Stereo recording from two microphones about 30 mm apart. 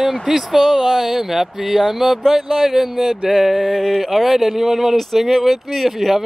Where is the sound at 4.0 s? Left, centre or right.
Centre.